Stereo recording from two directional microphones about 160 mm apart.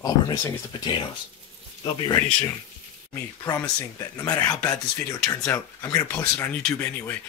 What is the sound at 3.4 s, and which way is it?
Speech, 20° left (ahead or behind).